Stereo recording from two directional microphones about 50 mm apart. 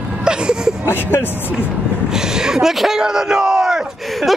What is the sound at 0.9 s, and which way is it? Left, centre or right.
Speech, left.